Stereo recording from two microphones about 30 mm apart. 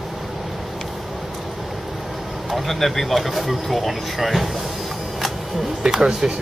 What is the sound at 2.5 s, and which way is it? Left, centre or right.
Speech, centre.